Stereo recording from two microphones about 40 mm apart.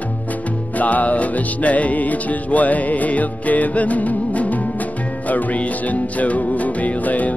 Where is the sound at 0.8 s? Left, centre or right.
Left.